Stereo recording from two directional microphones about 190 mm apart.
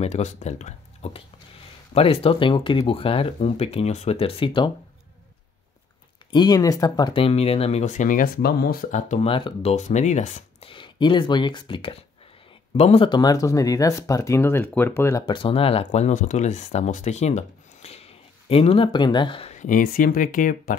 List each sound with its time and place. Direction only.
0.0 s speech: 35° left (ahead or behind)
6.3 s speech: 20° left (ahead or behind); by 10.7 s 40° left (ahead or behind)
10.7 s speech: 25° left (ahead or behind); by 20.7 s 45° left (ahead or behind)